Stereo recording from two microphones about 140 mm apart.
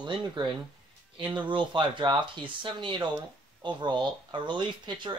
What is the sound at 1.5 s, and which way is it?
Speech, 35° right (ahead or behind).